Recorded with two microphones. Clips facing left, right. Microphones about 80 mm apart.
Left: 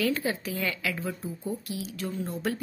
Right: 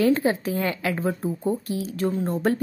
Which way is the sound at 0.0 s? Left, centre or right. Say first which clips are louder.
Right 8 dB; right.